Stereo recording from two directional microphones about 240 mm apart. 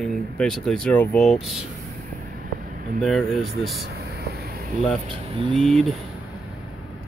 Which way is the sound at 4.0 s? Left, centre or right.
Right.